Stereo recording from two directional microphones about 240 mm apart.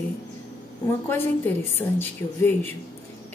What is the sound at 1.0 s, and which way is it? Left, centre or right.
A woman's voice, centre.